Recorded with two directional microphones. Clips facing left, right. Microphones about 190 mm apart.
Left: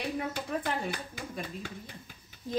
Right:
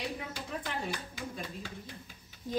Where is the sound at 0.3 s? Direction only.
55° left (ahead or behind).